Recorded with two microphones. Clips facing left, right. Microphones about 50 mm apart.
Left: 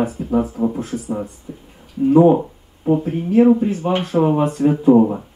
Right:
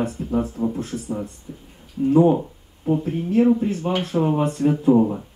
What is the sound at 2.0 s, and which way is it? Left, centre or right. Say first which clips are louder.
Speech: left 4 dB; centre.